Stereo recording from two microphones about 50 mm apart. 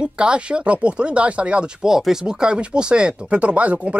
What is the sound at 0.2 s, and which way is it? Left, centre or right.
Speech, right.